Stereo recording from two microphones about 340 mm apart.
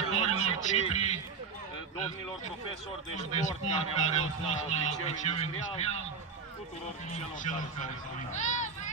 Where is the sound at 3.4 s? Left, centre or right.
Left.